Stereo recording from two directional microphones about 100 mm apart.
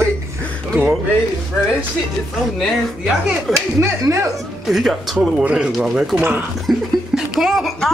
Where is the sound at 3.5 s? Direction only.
30° right (ahead or behind).